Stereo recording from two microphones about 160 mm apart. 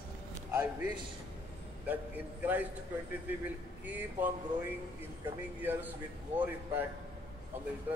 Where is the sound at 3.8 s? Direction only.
10° right (ahead or behind).